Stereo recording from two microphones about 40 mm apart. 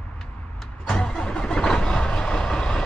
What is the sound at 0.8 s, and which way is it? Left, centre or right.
Vehicle, centre.